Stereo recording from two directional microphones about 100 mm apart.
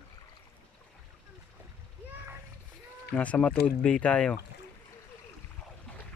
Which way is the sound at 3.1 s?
10° left (ahead or behind).